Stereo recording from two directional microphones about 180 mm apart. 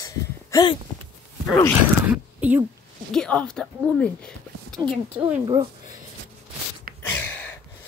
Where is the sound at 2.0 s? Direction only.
5° right (ahead or behind).